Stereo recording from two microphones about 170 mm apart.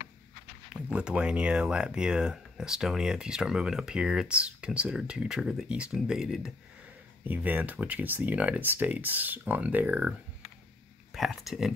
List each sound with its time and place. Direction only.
0.8 s speech: 5° right (ahead or behind)
11.1 s speech: centre (ahead or behind)